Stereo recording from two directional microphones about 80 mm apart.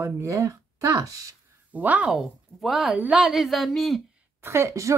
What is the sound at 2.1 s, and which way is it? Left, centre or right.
Speech, centre.